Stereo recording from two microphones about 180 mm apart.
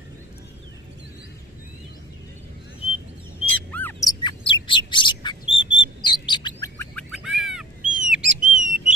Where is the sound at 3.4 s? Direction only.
10° left (ahead or behind).